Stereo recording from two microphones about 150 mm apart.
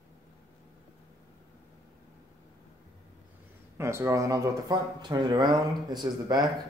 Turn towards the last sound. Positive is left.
turn(degrees=-25)  # may be behind; listen again after turning